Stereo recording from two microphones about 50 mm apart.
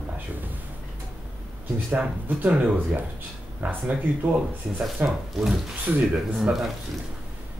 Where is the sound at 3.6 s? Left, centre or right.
Right.